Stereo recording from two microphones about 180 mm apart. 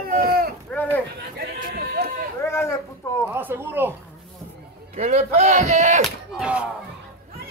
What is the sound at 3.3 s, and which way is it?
Speech, 10° right (ahead or behind).